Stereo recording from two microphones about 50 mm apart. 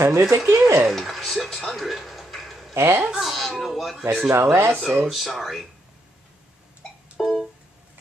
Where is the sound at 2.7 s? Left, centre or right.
Right.